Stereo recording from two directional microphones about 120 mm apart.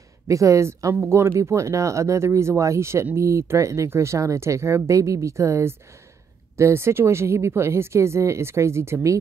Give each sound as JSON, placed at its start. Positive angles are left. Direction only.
{"t": 0.3, "sound": "speech", "side_deg": -25}